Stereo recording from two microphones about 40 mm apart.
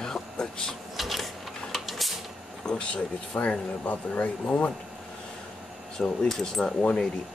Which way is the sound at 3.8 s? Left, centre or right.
Left.